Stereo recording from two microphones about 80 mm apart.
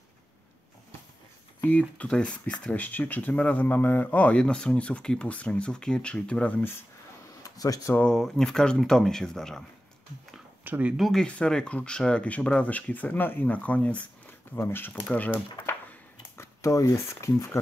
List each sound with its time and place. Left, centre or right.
1.6 s speech: centre
4.4 s speech: centre
7.4 s speech: left
8.0 s speech: centre
10.6 s speech: centre
11.0 s speech: centre
11.2 s speech: centre
14.2 s a sound: left
15.0 s speech: centre
16.3 s speech: left